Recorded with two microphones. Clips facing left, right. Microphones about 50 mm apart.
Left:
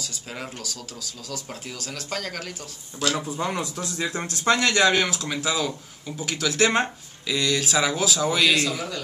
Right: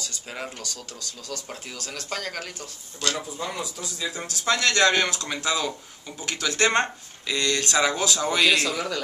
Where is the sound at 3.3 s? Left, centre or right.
Left.